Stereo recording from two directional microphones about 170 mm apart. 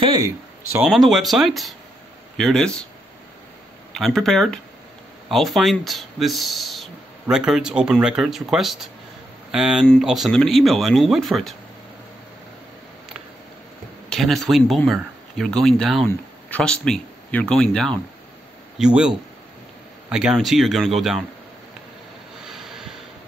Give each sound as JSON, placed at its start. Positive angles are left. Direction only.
{"t": 0.0, "sound": "speech", "side_deg": -25}
{"t": 0.7, "sound": "speech", "side_deg": 0}
{"t": 3.9, "sound": "speech", "side_deg": 0}
{"t": 14.0, "sound": "speech", "side_deg": 0}
{"t": 22.5, "sound": "a sound", "side_deg": 0}